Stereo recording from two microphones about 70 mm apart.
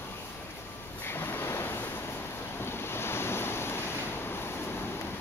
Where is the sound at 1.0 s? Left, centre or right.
Left.